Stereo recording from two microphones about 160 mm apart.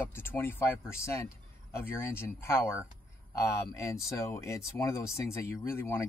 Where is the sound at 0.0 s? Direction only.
15° left (ahead or behind).